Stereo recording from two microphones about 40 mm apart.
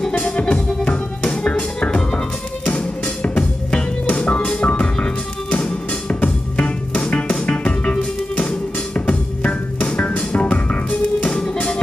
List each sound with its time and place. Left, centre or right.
0.2 s music: left
4.1 s music: left
6.2 s music: left
8.5 s organ: left
10.1 s music: left
10.5 s music: left